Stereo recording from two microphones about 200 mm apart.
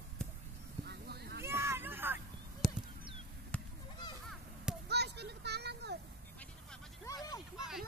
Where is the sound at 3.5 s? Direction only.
5° left (ahead or behind).